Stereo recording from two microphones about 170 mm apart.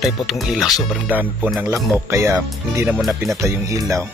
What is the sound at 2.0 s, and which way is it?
Speech, 15° right (ahead or behind).